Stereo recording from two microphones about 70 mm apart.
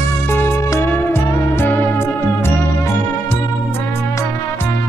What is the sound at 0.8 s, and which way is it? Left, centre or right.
Music, left.